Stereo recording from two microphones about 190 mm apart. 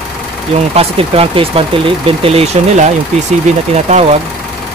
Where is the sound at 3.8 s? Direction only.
35° right (ahead or behind).